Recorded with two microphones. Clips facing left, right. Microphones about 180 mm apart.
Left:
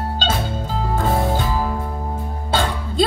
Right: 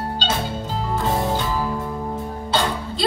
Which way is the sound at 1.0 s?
50° left (ahead or behind).